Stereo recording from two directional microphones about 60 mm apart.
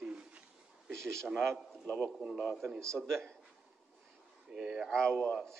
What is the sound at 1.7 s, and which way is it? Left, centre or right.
Speech, centre.